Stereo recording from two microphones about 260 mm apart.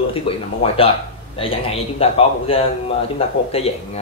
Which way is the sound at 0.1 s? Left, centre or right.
Left.